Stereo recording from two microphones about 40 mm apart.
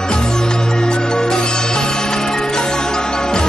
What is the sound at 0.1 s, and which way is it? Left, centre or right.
Music, centre.